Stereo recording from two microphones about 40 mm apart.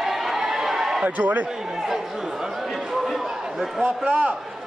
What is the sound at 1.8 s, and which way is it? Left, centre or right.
Speech, centre.